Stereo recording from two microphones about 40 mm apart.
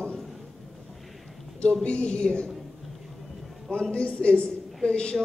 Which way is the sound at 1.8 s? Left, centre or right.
Left.